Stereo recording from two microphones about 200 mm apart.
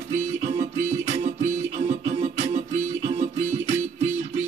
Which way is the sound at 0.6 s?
35° right (ahead or behind).